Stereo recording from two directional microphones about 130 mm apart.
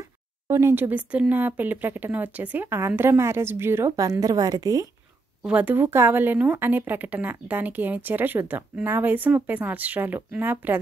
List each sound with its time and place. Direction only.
0.0 s a sound: 20° right (ahead or behind)
1.3 s a woman's voice: 15° right (ahead or behind); by 4.8 s 30° right (ahead or behind)
5.4 s speech: 10° right (ahead or behind)